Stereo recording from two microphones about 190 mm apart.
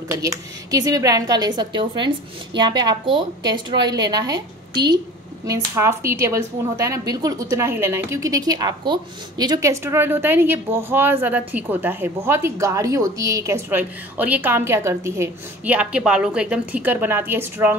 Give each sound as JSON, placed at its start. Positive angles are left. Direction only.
{"t": 0.1, "sound": "speech", "side_deg": -15}
{"t": 5.4, "sound": "speech", "side_deg": -15}